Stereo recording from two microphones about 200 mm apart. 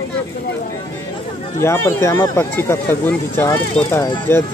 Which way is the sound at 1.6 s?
15° left (ahead or behind).